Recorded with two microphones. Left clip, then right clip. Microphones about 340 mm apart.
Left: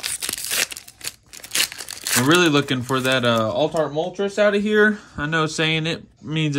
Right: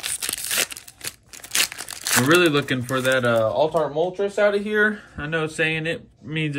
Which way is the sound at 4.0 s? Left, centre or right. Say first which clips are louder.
Left 1 dB; left.